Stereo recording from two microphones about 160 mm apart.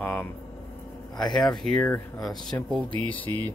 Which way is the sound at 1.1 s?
25° left (ahead or behind).